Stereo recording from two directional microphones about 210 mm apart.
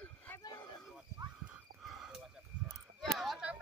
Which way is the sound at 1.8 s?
5° right (ahead or behind).